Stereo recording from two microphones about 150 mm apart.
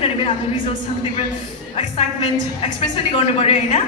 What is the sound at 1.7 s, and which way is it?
A woman's voice, 40° left (ahead or behind).